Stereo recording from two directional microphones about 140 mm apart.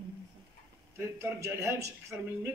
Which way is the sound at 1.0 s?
15° right (ahead or behind).